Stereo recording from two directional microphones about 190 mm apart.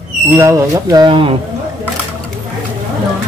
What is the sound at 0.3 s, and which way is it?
Speech, 15° right (ahead or behind).